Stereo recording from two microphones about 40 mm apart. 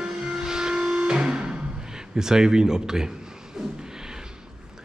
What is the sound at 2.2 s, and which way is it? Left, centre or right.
Speech, centre.